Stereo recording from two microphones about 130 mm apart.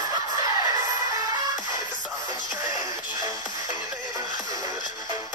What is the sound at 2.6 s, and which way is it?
Music, 25° right (ahead or behind).